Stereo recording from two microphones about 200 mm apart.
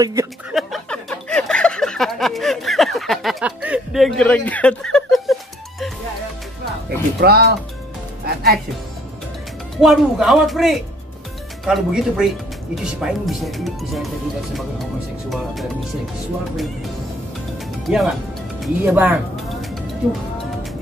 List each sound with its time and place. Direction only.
0.0 s speech: 15° right (ahead or behind)
0.5 s a sound: centre (ahead or behind)
7.2 s speech: 55° right (ahead or behind)
9.8 s speech: centre (ahead or behind)
17.9 s speech: 5° right (ahead or behind)